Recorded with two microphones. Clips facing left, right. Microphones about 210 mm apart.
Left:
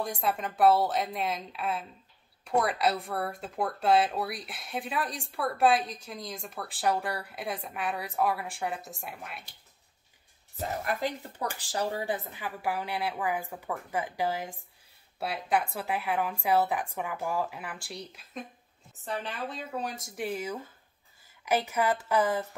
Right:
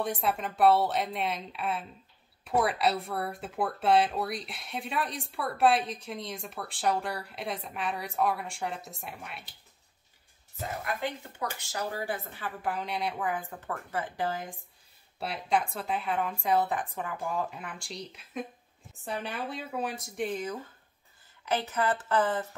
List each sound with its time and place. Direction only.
0.0 s speech: centre (ahead or behind)
11.0 s speech: 40° left (ahead or behind)
12.3 s a woman's voice: 10° left (ahead or behind)